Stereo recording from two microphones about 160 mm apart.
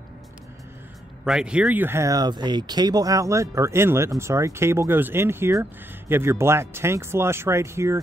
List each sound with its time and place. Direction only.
1.2 s speech: 5° right (ahead or behind)